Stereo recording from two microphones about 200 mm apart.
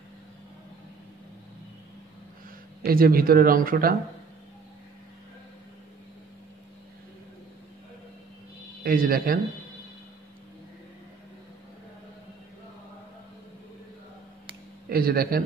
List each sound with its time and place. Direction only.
2.9 s speech: 45° right (ahead or behind)
8.8 s speech: 45° right (ahead or behind)
14.9 s speech: 45° right (ahead or behind)